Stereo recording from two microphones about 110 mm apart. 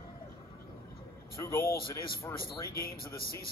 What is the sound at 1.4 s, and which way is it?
Speech, 25° left (ahead or behind).